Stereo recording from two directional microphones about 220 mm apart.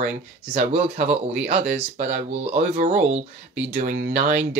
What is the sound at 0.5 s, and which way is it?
Speech, 30° right (ahead or behind).